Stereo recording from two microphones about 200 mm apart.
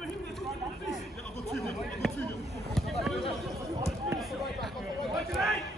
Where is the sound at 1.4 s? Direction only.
Centre (ahead or behind).